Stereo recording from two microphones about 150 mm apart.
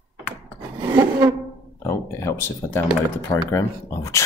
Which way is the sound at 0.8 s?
15° right (ahead or behind).